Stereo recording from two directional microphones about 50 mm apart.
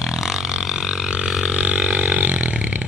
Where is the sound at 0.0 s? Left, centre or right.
Centre.